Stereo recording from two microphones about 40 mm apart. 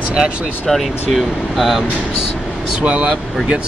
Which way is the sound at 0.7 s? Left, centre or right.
Centre.